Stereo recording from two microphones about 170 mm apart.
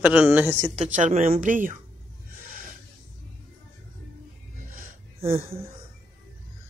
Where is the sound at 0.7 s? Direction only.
45° right (ahead or behind).